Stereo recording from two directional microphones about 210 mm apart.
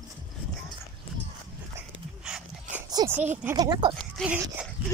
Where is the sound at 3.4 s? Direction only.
15° right (ahead or behind).